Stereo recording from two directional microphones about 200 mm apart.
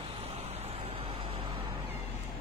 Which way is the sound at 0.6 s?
30° right (ahead or behind).